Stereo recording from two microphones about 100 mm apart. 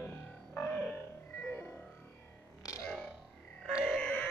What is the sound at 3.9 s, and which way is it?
Grunt, 10° left (ahead or behind).